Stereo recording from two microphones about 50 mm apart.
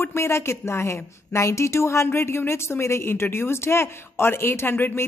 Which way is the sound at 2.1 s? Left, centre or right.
Left.